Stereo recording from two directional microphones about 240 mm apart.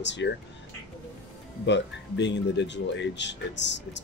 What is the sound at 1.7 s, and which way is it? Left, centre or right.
Speech, left.